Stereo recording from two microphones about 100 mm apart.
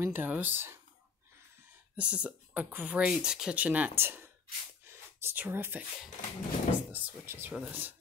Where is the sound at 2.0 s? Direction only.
10° right (ahead or behind).